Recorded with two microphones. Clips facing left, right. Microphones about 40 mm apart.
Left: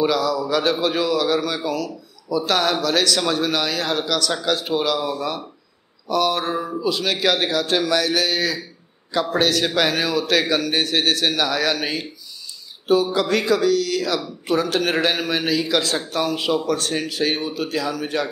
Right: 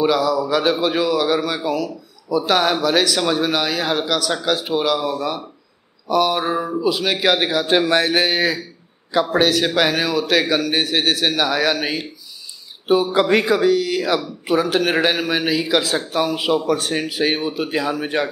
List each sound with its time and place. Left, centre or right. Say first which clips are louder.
0.0 s a man's voice: right 2 dB; centre
7.8 s speech: right 3 dB; right
9.1 s a man's voice: right 3 dB; centre
12.8 s speech: right 2 dB; right
14.4 s a man's voice: right 1 dB; centre; by 18.3 s right